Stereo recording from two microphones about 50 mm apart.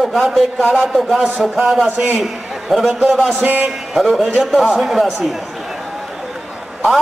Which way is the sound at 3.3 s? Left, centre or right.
Right.